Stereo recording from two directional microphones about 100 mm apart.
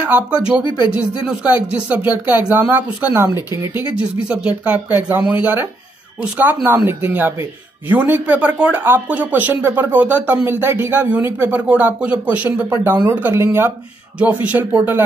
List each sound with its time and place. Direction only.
0.0 s speech: 10° right (ahead or behind)